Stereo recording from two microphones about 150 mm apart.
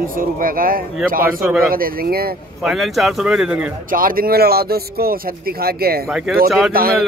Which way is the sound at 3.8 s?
70° right (ahead or behind).